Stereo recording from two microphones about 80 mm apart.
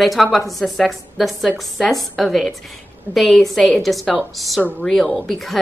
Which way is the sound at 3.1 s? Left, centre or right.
Right.